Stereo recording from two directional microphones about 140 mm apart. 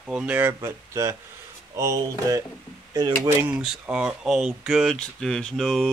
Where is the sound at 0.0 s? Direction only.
10° right (ahead or behind).